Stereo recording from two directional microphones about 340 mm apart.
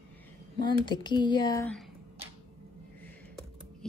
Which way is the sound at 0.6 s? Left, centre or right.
Centre.